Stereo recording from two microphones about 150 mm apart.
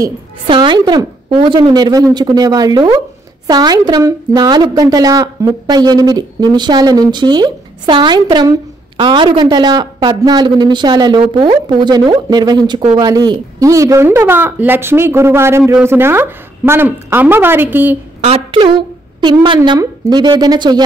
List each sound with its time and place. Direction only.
0.5 s a woman's voice: 30° right (ahead or behind); by 17.9 s 15° right (ahead or behind)
18.2 s a woman's voice: 40° right (ahead or behind)